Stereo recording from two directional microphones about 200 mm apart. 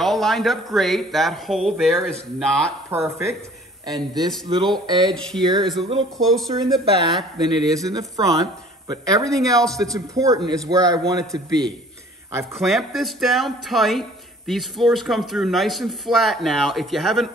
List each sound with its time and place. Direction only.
0.0 s speech: centre (ahead or behind)
2.9 s a man's voice: 15° right (ahead or behind)
5.1 s speech: 5° left (ahead or behind)
5.4 s speech: 20° right (ahead or behind)
6.1 s speech: centre (ahead or behind)
6.5 s a man's voice: 20° right (ahead or behind)
12.5 s speech: centre (ahead or behind)